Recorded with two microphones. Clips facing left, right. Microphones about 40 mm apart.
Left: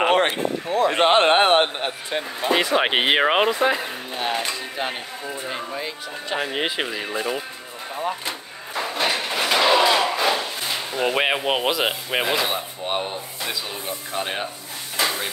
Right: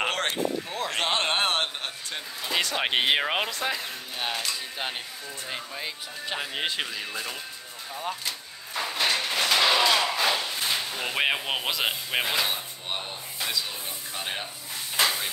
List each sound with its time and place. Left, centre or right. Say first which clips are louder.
0.0 s a sound: left 8 dB; left
0.8 s a man's voice: left 10 dB; left
5.8 s speech: left 5 dB; centre
7.9 s speech: left 6 dB; left
8.7 s a sound: left 3 dB; centre
11.7 s speech: left 5 dB; centre
15.0 s hiss: left 2 dB; centre